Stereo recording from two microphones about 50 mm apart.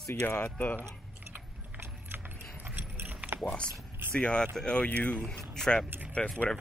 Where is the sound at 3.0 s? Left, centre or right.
Right.